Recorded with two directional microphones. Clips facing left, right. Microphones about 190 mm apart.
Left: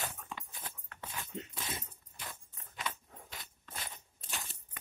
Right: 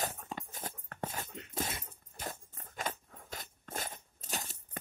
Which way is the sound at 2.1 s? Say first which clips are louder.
Right 6 dB; 45° right (ahead or behind).